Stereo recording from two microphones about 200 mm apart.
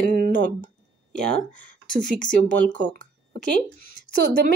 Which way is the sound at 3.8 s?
45° left (ahead or behind).